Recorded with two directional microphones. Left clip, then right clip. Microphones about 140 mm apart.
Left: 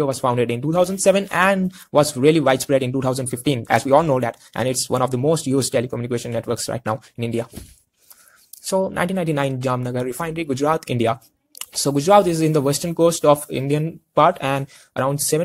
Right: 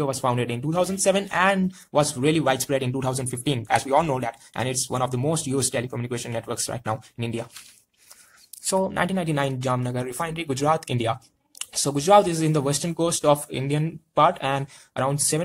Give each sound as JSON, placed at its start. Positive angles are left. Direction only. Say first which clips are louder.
{"t": 0.0, "sound": "speech", "louder": "left 5 dB", "side_deg": 25}
{"t": 8.6, "sound": "speech", "louder": "left 3 dB", "side_deg": 20}